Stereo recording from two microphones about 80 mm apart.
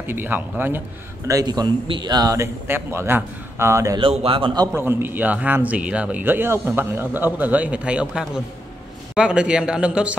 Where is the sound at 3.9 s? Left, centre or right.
Right.